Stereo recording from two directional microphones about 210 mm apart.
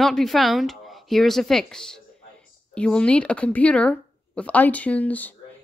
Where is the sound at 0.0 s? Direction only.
Centre (ahead or behind).